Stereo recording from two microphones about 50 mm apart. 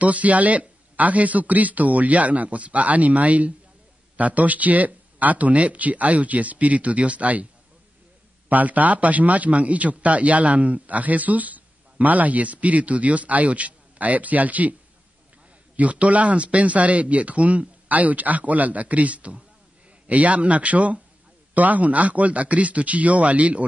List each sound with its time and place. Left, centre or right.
0.0 s a man's voice: right
8.5 s a man's voice: right